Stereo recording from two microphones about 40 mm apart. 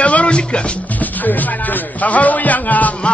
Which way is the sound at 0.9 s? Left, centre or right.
Left.